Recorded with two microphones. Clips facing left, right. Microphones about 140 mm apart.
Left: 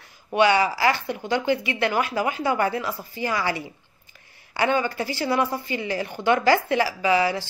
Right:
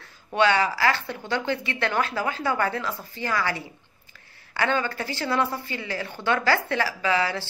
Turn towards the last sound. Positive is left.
turn(degrees=15)  # may be behind; listen again after turning